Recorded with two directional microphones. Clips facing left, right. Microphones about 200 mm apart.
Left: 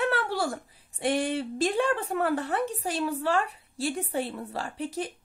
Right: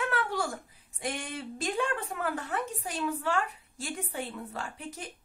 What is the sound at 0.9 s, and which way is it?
A woman's voice, 35° left (ahead or behind).